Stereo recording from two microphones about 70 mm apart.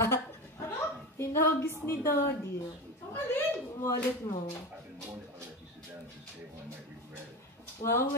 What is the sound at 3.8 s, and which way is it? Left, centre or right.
Speech, left.